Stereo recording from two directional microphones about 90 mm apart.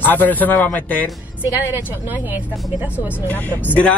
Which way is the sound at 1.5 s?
20° right (ahead or behind).